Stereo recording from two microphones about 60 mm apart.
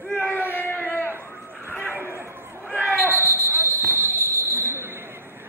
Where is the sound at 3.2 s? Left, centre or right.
Left.